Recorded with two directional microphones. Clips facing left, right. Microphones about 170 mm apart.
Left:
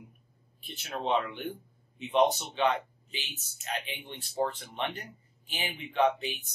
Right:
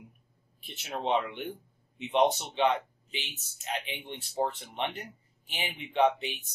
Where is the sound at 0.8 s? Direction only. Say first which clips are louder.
Even; 20° right (ahead or behind).